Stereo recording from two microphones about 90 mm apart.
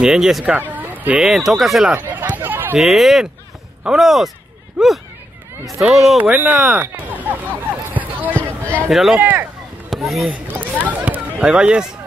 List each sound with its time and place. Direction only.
0.0 s speech: 5° right (ahead or behind)
0.5 s a sound: 20° right (ahead or behind)
1.2 s speech: 5° right (ahead or behind)
2.0 s a sound: 20° right (ahead or behind)
2.8 s speech: centre (ahead or behind)
6.2 s a sound: 15° right (ahead or behind)
8.9 s speech: 5° right (ahead or behind)
9.2 s speech: 20° right (ahead or behind)
9.8 s speech: centre (ahead or behind)
10.6 s speech: 20° right (ahead or behind)